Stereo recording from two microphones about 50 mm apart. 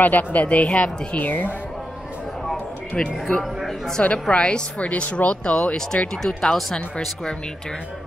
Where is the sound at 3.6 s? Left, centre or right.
Centre.